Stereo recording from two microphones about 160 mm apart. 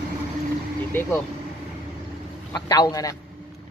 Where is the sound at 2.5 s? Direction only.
25° left (ahead or behind).